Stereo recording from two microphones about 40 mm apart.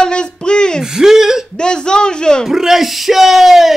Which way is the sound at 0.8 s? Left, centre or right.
Centre.